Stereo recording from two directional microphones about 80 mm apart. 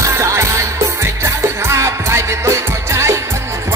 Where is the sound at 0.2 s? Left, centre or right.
Right.